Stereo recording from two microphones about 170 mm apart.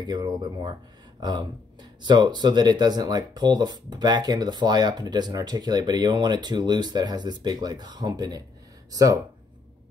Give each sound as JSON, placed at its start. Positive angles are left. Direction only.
{"t": 0.0, "sound": "speech", "side_deg": -25}